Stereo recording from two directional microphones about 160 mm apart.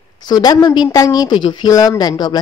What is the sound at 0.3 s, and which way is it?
Speech, 25° left (ahead or behind).